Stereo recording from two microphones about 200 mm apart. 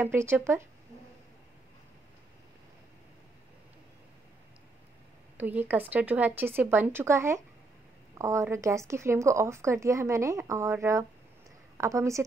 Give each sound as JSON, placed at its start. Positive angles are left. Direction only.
{"t": 0.0, "sound": "a woman's voice", "side_deg": -10}
{"t": 5.4, "sound": "a woman's voice", "side_deg": -10}